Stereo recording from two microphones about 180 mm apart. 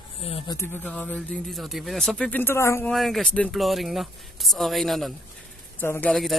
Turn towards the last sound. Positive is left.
turn(degrees=5)  # may be behind; listen again after turning